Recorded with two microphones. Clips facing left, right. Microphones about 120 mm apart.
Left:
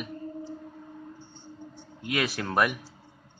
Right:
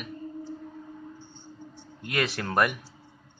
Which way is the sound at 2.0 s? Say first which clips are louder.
Even; 5° left (ahead or behind).